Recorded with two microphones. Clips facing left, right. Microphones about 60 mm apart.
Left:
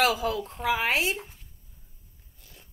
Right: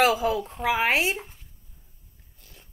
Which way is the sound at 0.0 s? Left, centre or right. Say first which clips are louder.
Right 3 dB; right.